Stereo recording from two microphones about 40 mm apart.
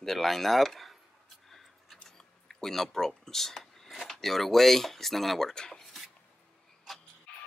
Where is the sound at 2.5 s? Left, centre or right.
Centre.